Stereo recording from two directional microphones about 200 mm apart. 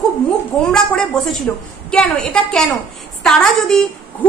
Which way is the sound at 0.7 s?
Centre (ahead or behind).